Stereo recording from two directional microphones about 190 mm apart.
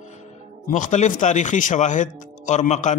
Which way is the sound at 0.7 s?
40° left (ahead or behind).